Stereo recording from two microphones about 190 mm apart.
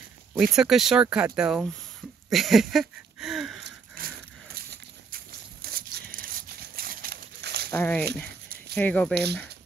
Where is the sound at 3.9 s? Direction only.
50° right (ahead or behind).